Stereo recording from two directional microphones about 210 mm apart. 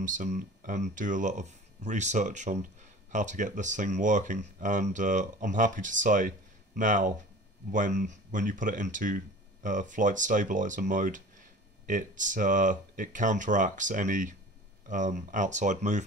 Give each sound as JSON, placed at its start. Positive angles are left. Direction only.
{"t": 0.0, "sound": "speech", "side_deg": -35}